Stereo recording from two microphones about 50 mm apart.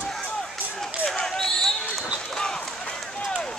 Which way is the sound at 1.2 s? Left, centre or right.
Centre.